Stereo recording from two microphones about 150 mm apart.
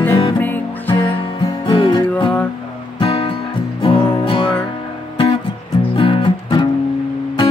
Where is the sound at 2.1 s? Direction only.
10° left (ahead or behind).